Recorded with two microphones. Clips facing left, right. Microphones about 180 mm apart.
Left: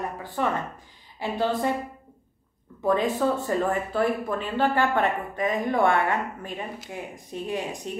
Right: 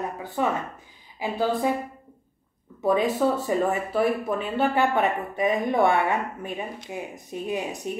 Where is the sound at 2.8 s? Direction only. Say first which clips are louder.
Right 1 dB; 10° right (ahead or behind).